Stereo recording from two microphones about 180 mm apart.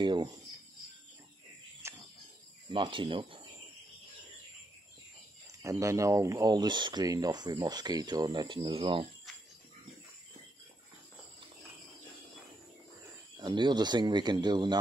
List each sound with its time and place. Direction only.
0.0 s speech: 25° right (ahead or behind)
1.8 s cricket: 15° right (ahead or behind)
2.7 s speech: 25° right (ahead or behind)
5.6 s speech: 15° right (ahead or behind)
13.4 s speech: 25° right (ahead or behind)